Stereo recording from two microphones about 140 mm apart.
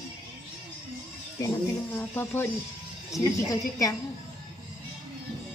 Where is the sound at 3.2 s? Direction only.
25° left (ahead or behind).